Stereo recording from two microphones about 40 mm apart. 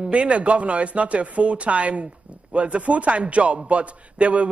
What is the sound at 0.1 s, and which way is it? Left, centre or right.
A man's voice, right.